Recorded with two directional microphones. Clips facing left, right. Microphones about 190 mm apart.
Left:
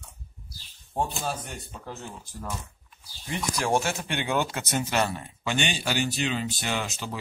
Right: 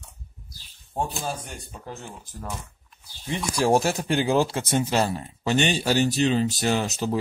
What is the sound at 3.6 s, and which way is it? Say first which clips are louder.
Speech: right 6 dB; 35° right (ahead or behind).